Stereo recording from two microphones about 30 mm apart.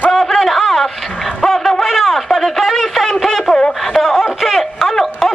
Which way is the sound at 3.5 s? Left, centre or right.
Left.